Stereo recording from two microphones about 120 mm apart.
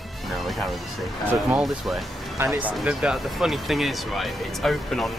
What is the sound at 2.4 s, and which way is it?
Speech, 20° right (ahead or behind).